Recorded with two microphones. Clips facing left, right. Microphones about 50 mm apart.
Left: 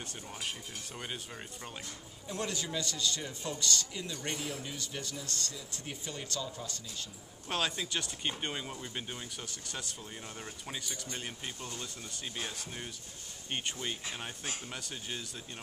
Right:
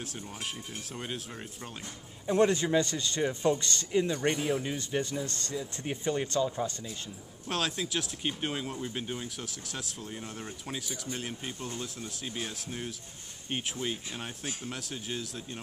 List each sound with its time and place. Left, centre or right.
0.0 s speech: centre
2.2 s a man's voice: right
7.4 s speech: centre